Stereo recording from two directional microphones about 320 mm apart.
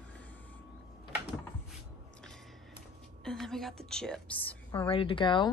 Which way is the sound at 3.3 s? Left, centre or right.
Centre.